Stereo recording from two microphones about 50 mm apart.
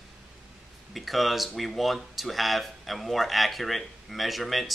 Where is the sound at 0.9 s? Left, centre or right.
Centre.